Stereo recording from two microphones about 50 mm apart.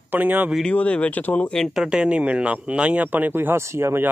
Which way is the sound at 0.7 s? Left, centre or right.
Left.